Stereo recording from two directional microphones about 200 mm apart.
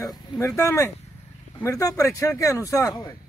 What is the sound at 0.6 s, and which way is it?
Speech, 15° left (ahead or behind).